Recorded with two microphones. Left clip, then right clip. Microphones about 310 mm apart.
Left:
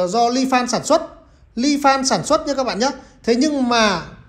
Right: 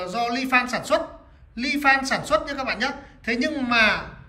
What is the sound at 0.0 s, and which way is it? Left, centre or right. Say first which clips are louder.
A woman's voice: left 8 dB; centre.